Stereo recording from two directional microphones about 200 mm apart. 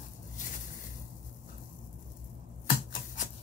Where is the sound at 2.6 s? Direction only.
40° left (ahead or behind).